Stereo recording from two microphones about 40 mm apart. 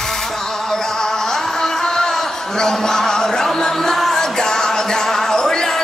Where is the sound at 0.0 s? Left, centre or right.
Centre.